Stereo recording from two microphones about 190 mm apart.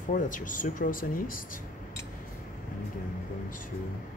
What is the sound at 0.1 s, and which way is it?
Speech, 45° left (ahead or behind).